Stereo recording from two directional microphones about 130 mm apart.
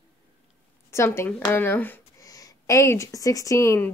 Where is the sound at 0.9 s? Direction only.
20° left (ahead or behind).